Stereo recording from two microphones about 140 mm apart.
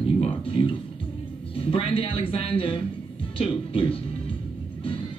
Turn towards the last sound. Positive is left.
turn(degrees=40)  # may be behind; listen again after turning